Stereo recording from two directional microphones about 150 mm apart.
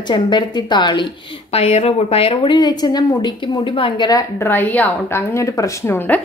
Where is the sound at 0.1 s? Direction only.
30° left (ahead or behind).